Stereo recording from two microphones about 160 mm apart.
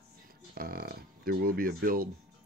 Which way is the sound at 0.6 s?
70° right (ahead or behind).